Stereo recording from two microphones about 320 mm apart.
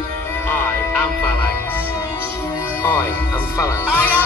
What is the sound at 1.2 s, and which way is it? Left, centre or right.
Music, centre.